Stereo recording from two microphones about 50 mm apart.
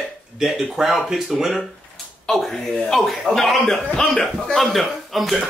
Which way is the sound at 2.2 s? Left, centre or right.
Centre.